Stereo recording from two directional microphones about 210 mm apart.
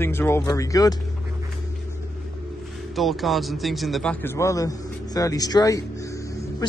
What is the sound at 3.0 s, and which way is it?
A man's voice, centre (ahead or behind).